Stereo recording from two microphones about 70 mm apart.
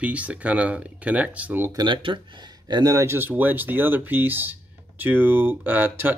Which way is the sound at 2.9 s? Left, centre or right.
Right.